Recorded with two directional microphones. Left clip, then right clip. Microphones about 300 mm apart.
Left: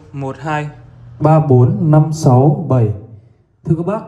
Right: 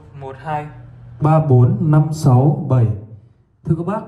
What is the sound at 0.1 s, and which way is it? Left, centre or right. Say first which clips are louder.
Speech: left 7 dB; left.